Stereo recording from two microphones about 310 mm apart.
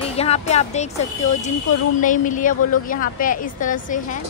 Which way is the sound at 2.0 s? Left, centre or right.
Left.